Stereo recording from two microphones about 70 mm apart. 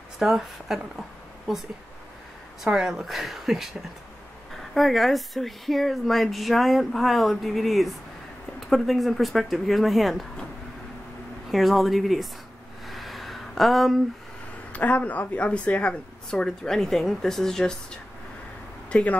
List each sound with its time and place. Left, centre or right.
0.2 s a woman's voice: centre
4.7 s a woman's voice: centre
11.5 s a woman's voice: centre
12.8 s a sound: centre
14.7 s speech: left
18.9 s speech: centre